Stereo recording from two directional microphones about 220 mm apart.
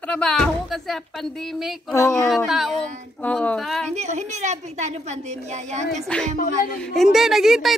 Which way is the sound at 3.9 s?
30° right (ahead or behind).